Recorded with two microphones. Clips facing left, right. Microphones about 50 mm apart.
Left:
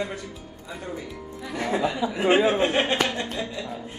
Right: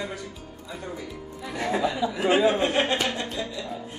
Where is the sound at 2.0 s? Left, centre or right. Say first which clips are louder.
Left 1 dB; left.